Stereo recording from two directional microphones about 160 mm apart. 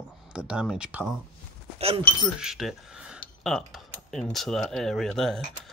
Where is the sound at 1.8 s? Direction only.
40° right (ahead or behind).